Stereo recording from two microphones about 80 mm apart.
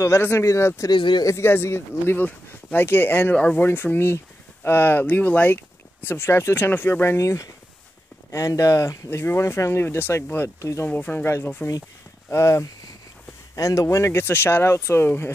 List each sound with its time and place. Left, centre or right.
0.0 s speech: left
0.9 s speech: left
1.2 s speech: left
7.2 s speech: left
10.6 s speech: left
10.9 s speech: left